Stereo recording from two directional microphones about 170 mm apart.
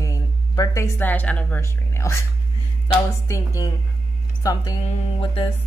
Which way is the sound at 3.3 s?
20° left (ahead or behind).